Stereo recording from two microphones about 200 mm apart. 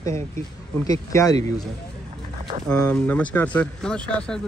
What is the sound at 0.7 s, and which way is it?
Speech, 15° left (ahead or behind).